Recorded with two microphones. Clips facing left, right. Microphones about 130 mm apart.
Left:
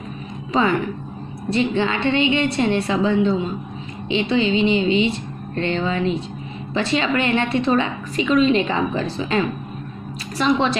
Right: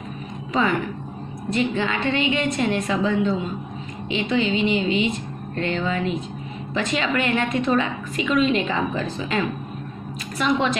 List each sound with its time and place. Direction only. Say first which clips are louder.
0.5 s a woman's voice: left 3 dB; 35° left (ahead or behind)
10.3 s a woman's voice: left 3 dB; 30° left (ahead or behind)